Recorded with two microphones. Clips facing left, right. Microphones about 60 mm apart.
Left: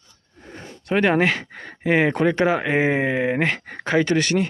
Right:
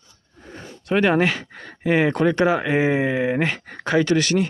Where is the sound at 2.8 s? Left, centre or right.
Left.